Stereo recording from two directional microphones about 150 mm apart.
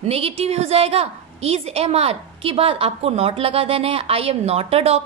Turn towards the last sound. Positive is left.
turn(degrees=-45)  # may be behind; listen again after turning